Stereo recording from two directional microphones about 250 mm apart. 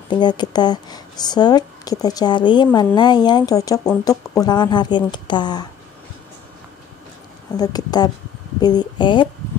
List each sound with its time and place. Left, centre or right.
0.1 s speech: centre
7.5 s speech: centre